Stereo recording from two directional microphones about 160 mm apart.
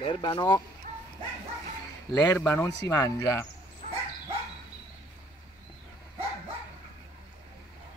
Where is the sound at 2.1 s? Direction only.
10° left (ahead or behind).